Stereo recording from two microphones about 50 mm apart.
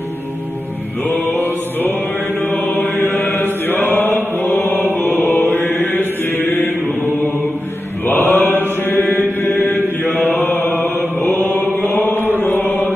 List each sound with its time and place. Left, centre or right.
1.3 s music: left
2.4 s chant: left
8.2 s mantra: left
11.5 s chant: left